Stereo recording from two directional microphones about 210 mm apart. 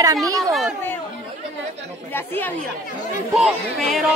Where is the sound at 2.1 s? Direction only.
10° left (ahead or behind).